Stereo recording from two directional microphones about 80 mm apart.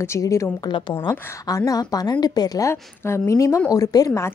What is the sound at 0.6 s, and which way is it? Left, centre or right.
Speech, left.